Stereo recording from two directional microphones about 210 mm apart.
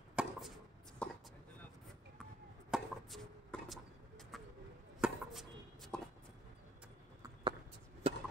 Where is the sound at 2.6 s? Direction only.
Centre (ahead or behind).